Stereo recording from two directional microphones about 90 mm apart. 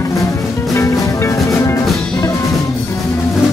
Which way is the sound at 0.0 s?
35° left (ahead or behind).